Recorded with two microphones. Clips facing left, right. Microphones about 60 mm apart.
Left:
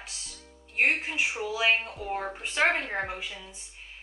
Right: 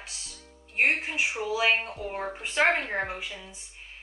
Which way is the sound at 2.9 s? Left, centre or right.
Centre.